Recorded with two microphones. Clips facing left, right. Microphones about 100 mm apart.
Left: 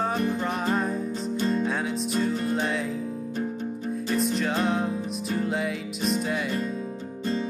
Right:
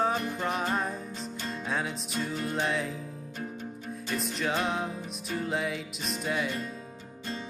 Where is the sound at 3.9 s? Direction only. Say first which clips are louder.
Left 8 dB; centre (ahead or behind).